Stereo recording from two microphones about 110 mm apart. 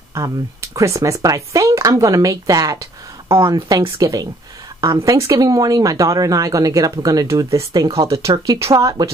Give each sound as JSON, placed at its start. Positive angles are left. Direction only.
{"t": 0.1, "sound": "speech", "side_deg": -30}
{"t": 3.3, "sound": "speech", "side_deg": -50}